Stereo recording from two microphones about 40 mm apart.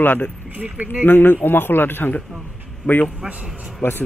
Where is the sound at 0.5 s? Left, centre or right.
Right.